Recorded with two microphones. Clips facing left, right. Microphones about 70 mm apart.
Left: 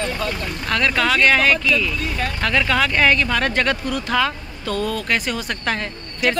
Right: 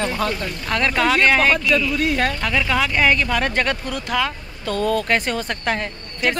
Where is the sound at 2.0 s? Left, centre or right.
Right.